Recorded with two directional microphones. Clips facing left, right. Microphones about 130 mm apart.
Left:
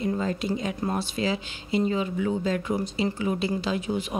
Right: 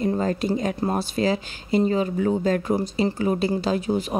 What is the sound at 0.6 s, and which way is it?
Speech, 40° right (ahead or behind).